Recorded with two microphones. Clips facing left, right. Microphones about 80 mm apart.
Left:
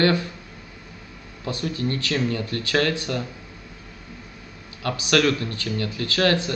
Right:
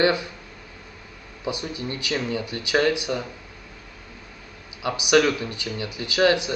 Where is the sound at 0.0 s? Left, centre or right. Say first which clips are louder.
Even; centre.